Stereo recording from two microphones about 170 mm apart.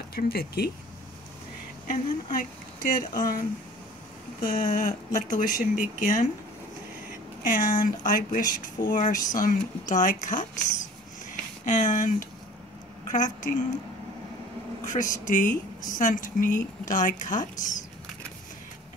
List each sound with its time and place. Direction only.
0.1 s speech: 65° left (ahead or behind)
1.9 s speech: 55° left (ahead or behind)
7.4 s speech: 50° left (ahead or behind)
11.6 s speech: 50° left (ahead or behind)
14.9 s speech: 50° left (ahead or behind)